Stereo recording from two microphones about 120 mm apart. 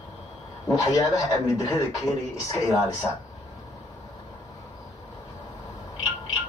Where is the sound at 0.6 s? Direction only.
25° left (ahead or behind).